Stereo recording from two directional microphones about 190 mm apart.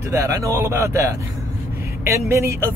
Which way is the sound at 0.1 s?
15° right (ahead or behind).